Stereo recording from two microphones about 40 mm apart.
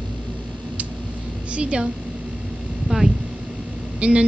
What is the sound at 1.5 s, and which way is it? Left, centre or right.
Speech, right.